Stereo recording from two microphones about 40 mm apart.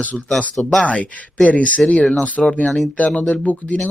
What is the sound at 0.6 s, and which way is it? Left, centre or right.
Speech, centre.